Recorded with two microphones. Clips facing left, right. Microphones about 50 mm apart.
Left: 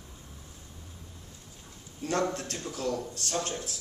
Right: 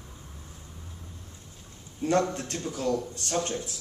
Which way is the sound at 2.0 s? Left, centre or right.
Right.